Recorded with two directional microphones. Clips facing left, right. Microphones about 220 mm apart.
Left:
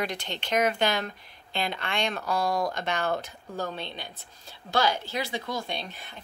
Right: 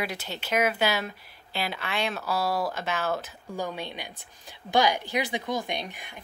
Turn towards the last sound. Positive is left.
turn(degrees=-15)  # may be behind; listen again after turning